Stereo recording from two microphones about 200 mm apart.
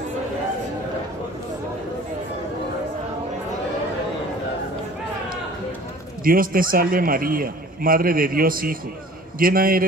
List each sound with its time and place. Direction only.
6.2 s a man's voice: 45° right (ahead or behind)